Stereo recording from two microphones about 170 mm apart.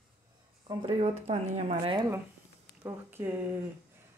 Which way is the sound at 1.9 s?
20° right (ahead or behind).